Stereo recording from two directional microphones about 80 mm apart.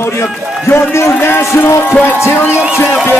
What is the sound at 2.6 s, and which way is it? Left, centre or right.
Speech, centre.